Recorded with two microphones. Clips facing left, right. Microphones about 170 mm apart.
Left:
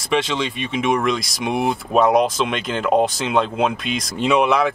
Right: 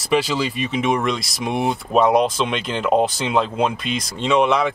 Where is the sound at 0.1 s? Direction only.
5° right (ahead or behind).